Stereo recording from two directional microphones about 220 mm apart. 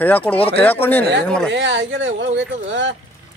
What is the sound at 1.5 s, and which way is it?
Speech, 50° right (ahead or behind).